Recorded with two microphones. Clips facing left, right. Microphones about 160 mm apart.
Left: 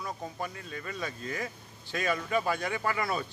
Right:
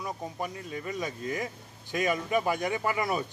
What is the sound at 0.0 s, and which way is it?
Speech, 15° right (ahead or behind).